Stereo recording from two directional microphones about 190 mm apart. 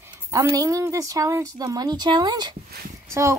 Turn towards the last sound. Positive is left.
turn(degrees=-15)  # may be behind; listen again after turning